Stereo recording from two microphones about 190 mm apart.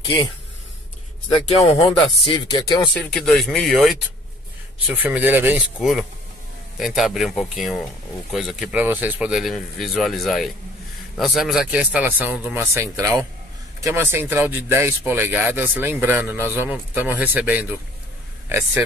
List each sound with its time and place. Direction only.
1.6 s speech: 5° left (ahead or behind)
2.2 s speech: 25° left (ahead or behind)
2.9 s speech: centre (ahead or behind)